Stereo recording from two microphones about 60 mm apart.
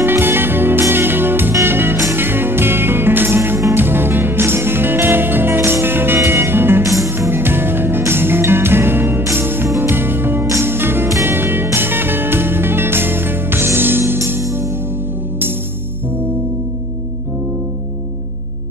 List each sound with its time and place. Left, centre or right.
0.0 s music: right